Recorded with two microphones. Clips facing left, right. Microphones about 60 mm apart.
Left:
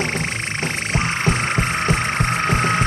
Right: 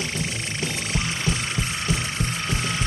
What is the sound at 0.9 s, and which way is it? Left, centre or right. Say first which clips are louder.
Music: left 8 dB; left.